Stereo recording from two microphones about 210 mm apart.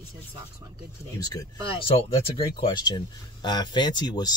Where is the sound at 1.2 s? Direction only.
15° left (ahead or behind).